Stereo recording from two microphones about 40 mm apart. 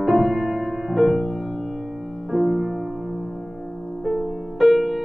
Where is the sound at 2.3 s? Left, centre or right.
Centre.